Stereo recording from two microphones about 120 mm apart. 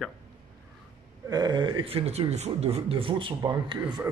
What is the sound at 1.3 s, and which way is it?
A man's voice, 35° right (ahead or behind).